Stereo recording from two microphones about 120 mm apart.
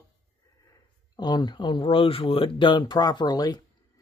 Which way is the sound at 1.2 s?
35° left (ahead or behind).